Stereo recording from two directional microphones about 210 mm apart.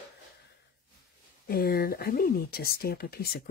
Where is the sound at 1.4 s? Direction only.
45° left (ahead or behind).